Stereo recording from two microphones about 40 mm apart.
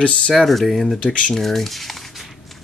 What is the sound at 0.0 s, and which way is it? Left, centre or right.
Speech, left.